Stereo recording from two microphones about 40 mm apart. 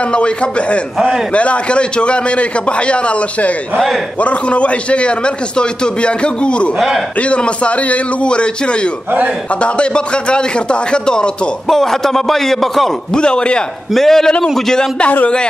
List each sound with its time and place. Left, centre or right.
0.1 s a man's voice: left
11.6 s a man's voice: centre
13.1 s a man's voice: left
13.9 s a man's voice: centre